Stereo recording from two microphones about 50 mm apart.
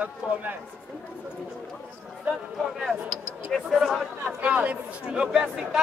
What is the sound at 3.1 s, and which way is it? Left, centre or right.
Speech, centre.